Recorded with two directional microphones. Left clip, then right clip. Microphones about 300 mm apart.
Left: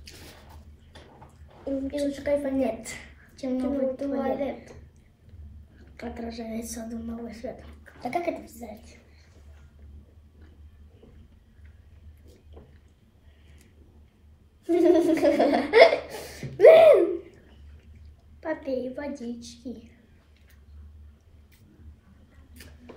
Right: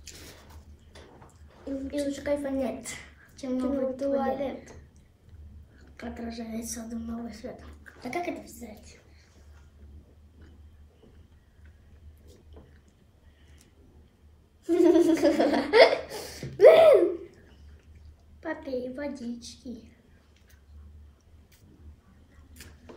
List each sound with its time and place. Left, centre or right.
2.0 s a woman's voice: centre
5.9 s a woman's voice: centre
14.6 s laughter: centre
18.4 s a sound: centre